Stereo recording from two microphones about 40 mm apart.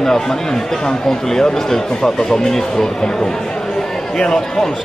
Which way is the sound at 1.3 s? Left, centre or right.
Centre.